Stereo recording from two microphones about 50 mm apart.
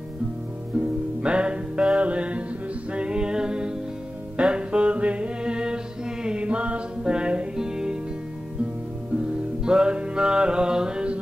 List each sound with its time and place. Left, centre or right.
0.7 s music: right
9.6 s music: centre